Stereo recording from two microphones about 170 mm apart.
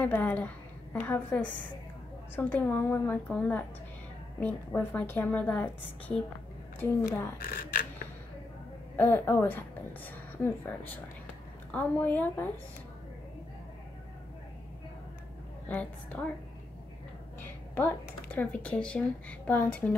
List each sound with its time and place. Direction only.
0.0 s a woman's voice: 10° left (ahead or behind)
7.3 s speech: 55° left (ahead or behind)
8.9 s a woman's voice: 10° left (ahead or behind)
15.7 s a woman's voice: 10° left (ahead or behind)
17.4 s a sound: 10° left (ahead or behind)
18.3 s a woman's voice: 5° left (ahead or behind)